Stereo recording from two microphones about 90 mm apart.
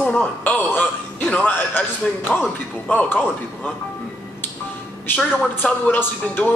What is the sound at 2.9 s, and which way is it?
Speech, 15° left (ahead or behind).